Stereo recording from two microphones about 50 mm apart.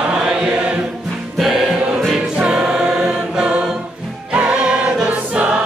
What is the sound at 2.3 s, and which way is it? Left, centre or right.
Choir, centre.